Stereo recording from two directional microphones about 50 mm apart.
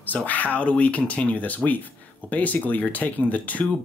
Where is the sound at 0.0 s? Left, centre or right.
Left.